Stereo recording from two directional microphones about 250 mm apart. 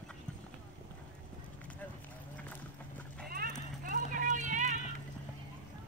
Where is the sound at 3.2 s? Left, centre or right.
Right.